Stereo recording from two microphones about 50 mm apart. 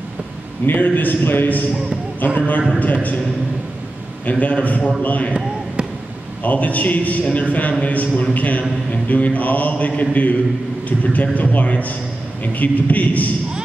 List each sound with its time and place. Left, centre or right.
0.7 s speech: left
4.3 s a man's voice: left
6.4 s a man's voice: left